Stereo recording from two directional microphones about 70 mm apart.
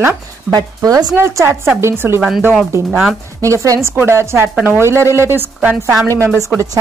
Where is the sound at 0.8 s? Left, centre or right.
Right.